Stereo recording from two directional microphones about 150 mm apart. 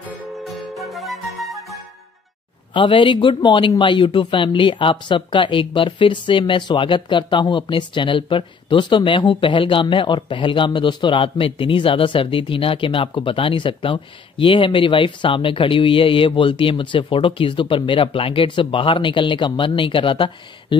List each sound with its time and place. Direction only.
0.5 s flute: centre (ahead or behind)
2.7 s speech: 35° left (ahead or behind)